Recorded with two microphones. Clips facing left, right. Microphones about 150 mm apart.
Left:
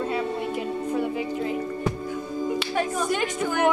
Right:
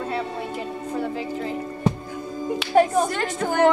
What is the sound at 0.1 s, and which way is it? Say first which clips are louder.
Music: left 1 dB; 10° left (ahead or behind).